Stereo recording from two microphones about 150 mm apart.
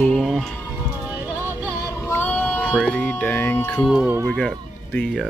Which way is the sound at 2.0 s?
15° left (ahead or behind).